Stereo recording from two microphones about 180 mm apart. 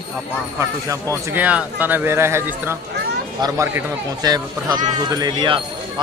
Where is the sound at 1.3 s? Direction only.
10° right (ahead or behind).